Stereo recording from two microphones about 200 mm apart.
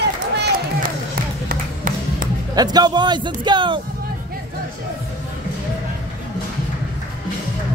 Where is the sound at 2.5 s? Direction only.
20° right (ahead or behind).